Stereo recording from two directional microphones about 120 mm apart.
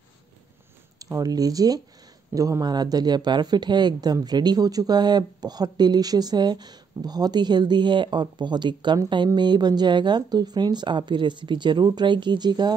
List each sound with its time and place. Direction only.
0.9 s speech: 30° right (ahead or behind)